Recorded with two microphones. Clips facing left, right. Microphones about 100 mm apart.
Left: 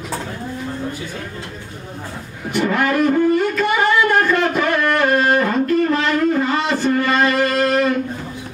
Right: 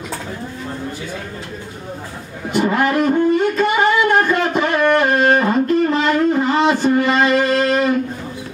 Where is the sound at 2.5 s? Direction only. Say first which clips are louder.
Right 1 dB; 20° right (ahead or behind).